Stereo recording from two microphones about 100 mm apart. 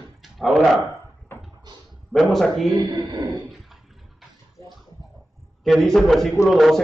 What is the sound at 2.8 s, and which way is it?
Speech, 50° right (ahead or behind).